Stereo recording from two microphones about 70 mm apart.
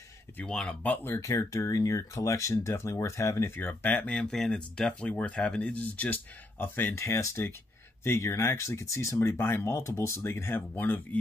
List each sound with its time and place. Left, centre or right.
0.5 s speech: centre
0.8 s speech: left
1.1 s speech: left
3.5 s speech: left
7.0 s speech: left